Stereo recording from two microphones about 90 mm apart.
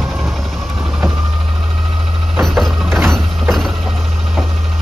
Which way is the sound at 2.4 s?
Centre (ahead or behind).